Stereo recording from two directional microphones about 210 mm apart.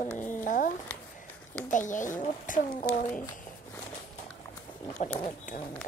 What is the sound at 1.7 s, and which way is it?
Speech, 35° left (ahead or behind).